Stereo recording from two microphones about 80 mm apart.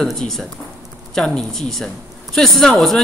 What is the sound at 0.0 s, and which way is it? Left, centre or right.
Speech, centre.